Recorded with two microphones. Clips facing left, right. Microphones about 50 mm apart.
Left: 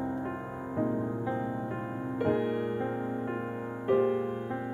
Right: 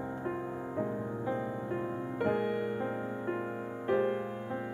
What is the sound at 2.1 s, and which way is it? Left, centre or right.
Music, centre.